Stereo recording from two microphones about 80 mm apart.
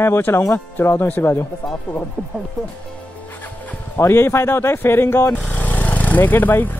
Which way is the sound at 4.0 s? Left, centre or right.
Left.